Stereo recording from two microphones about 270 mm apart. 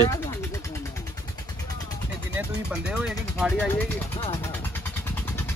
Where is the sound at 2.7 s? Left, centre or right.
Centre.